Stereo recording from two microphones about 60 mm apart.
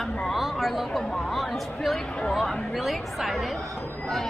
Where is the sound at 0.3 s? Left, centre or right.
Centre.